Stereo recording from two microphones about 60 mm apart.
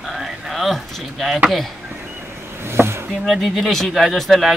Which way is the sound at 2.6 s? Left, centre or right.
Right.